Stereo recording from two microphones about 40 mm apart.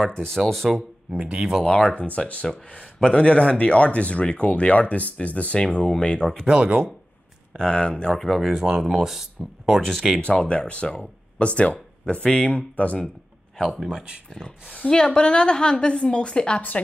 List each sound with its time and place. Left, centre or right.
0.0 s speech: centre
0.4 s speech: centre
0.7 s a man's voice: right
1.6 s a woman's voice: left
2.0 s speech: left
5.6 s a woman's voice: left
7.5 s a woman's voice: centre
8.1 s speech: centre
8.4 s speech: centre
10.2 s a woman's voice: left
13.8 s a man's voice: right
14.9 s a woman's voice: centre